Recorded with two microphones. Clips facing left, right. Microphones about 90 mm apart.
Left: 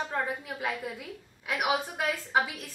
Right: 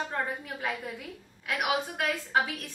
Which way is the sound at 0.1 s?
5° left (ahead or behind).